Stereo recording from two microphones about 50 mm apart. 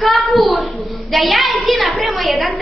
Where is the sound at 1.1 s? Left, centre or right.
Centre.